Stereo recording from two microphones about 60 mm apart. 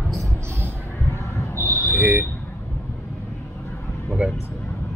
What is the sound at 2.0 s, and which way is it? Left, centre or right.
Vehicle, right.